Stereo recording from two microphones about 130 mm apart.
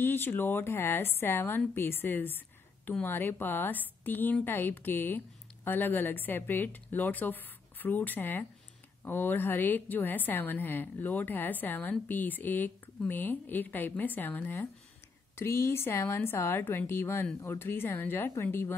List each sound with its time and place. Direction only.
0.0 s a woman's voice: 15° left (ahead or behind)